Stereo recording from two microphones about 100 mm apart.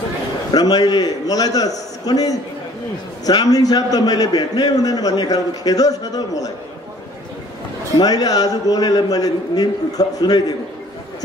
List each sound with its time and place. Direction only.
0.5 s a man's voice: 40° left (ahead or behind)
8.0 s a man's voice: 40° left (ahead or behind)